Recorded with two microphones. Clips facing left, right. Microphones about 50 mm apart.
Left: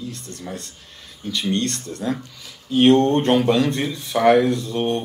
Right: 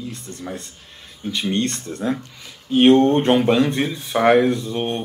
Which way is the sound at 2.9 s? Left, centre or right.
Centre.